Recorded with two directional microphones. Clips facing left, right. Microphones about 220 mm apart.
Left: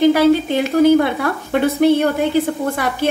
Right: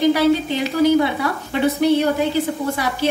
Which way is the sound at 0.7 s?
50° left (ahead or behind).